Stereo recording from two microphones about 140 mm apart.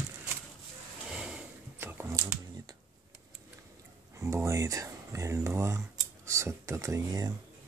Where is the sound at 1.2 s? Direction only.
5° right (ahead or behind); by 2.7 s 25° right (ahead or behind).